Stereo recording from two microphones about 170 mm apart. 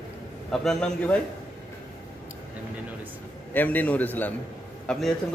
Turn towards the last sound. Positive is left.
turn(degrees=5)  # may be behind; listen again after turning